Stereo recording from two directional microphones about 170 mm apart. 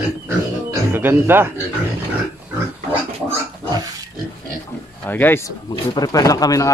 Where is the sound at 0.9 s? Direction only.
15° right (ahead or behind).